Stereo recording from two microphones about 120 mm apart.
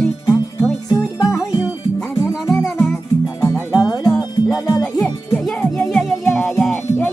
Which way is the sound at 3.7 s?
10° right (ahead or behind).